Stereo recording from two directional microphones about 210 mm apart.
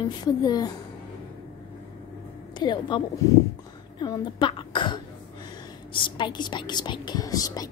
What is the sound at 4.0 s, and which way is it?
Throat clearing, 20° left (ahead or behind).